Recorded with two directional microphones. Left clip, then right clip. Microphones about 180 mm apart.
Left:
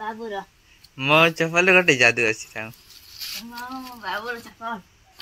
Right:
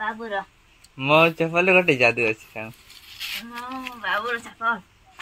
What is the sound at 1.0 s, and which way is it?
A woman's voice, 5° right (ahead or behind).